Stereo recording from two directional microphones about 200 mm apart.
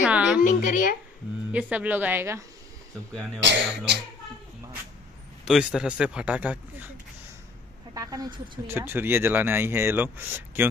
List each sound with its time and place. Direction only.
0.0 s a sound: 5° right (ahead or behind)
0.4 s speech: 40° left (ahead or behind)
1.5 s speech: 5° right (ahead or behind)
3.3 s speech: 60° right (ahead or behind)
5.4 s speech: 5° right (ahead or behind)
7.9 s speech: 15° right (ahead or behind)